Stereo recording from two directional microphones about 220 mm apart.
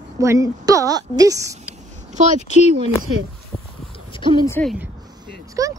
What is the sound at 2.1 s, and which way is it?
Speech, 35° right (ahead or behind).